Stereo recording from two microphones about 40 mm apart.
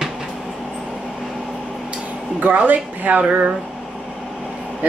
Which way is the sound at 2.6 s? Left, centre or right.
Right.